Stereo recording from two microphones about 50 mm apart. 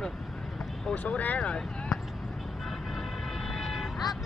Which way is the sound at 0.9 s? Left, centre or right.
Left.